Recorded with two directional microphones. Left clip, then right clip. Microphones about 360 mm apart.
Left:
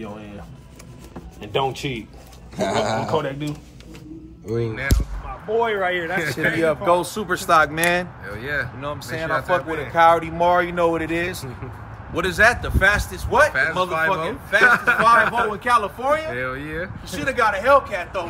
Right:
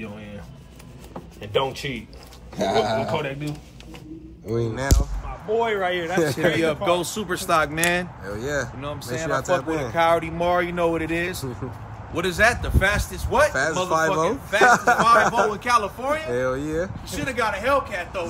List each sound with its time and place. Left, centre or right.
1.5 s speech: centre
2.5 s a man's voice: centre
4.5 s a man's voice: centre